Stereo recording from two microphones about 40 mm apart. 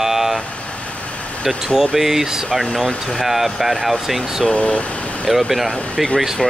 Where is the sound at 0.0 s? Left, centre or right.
Centre.